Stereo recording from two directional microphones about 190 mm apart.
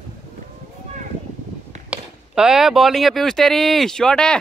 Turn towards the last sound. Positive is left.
turn(degrees=5)  # may be behind; listen again after turning